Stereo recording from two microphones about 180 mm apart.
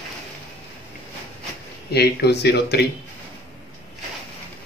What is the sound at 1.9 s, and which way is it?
Speech, 65° left (ahead or behind).